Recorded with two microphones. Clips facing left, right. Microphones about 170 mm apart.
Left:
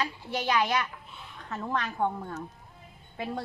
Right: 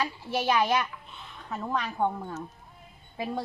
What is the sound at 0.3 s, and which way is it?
A woman's voice, 10° right (ahead or behind).